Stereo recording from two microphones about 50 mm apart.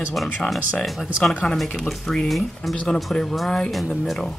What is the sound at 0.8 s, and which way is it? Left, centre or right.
Speech, centre.